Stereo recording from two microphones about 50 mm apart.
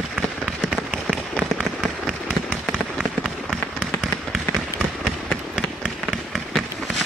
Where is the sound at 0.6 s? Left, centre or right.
Right.